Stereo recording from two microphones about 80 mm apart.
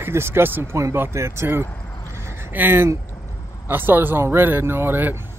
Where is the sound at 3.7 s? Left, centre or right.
Right.